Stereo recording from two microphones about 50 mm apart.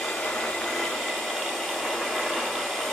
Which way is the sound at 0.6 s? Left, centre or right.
Centre.